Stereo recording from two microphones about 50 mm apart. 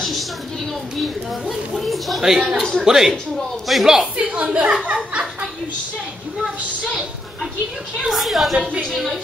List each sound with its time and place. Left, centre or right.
1.5 s a woman's voice: centre
4.2 s a woman's voice: right
4.8 s laughter: right
8.1 s a woman's voice: centre